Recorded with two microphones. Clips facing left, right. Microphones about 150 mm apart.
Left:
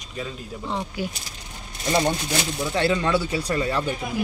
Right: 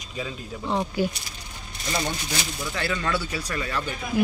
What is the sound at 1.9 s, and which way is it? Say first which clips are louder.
Speech: left 6 dB; 30° left (ahead or behind).